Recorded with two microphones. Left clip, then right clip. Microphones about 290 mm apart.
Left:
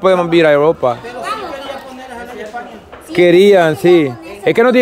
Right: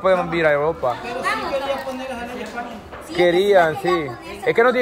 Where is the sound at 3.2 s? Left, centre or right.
Left.